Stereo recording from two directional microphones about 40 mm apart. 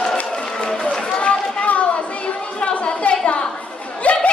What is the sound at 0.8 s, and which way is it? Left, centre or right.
Run, left.